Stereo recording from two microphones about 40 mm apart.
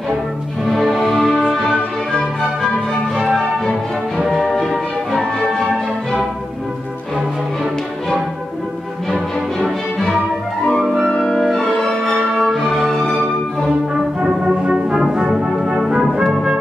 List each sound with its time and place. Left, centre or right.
0.7 s music: centre
4.5 s music: centre
9.1 s music: centre
12.2 s music: centre
14.2 s music: centre
15.6 s brass instrument: centre